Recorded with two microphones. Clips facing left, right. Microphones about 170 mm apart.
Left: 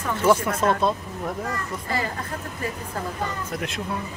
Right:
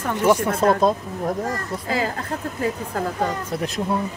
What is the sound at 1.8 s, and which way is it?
Speech, 90° right.